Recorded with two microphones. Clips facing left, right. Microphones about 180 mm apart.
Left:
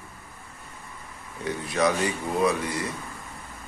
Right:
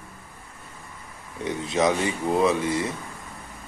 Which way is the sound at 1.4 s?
20° right (ahead or behind).